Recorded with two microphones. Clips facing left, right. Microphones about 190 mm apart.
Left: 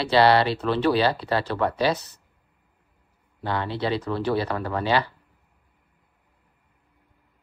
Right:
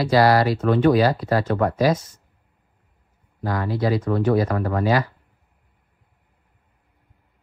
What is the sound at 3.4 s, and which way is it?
Speech, 30° left (ahead or behind).